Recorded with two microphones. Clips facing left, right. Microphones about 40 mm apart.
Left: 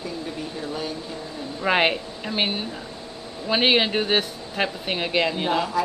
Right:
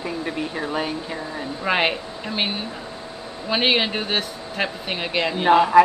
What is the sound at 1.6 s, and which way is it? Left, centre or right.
Speech, centre.